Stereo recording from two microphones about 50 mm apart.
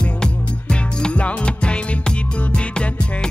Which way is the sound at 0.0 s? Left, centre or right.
Centre.